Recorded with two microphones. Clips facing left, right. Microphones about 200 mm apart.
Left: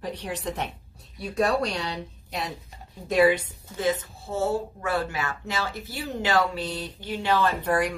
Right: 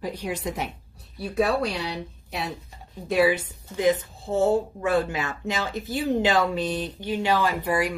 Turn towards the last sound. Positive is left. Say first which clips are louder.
# even
turn(degrees=-10)  # may be behind; listen again after turning